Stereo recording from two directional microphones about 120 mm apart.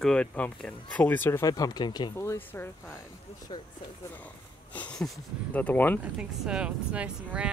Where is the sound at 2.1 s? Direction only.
20° left (ahead or behind).